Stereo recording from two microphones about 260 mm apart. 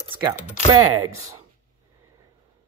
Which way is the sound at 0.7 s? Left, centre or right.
Right.